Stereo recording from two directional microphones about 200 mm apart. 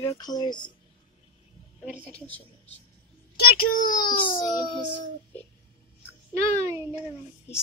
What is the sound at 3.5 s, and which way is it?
Speech, 45° left (ahead or behind).